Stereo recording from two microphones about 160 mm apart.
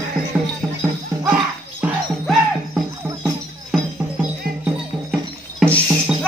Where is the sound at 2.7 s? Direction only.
15° right (ahead or behind).